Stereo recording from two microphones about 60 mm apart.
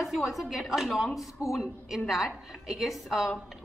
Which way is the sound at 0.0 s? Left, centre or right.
Centre.